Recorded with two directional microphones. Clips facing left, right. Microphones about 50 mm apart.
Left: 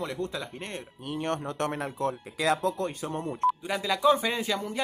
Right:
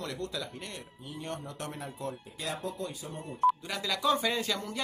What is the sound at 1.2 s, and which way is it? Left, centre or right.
Speech, left.